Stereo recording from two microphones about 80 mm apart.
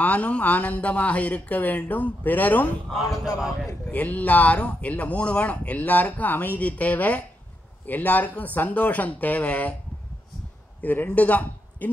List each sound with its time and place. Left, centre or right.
0.0 s speech: centre
3.9 s speech: centre
10.8 s speech: left